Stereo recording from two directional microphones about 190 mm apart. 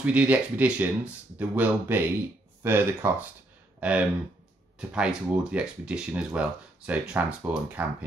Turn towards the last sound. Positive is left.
turn(degrees=-10)  # may be behind; listen again after turning